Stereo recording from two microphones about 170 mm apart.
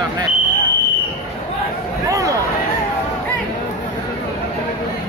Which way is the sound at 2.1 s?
20° right (ahead or behind).